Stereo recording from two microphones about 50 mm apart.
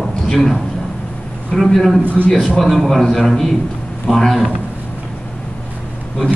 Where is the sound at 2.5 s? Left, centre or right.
Centre.